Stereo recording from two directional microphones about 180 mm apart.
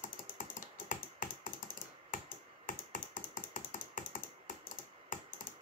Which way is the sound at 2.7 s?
45° left (ahead or behind).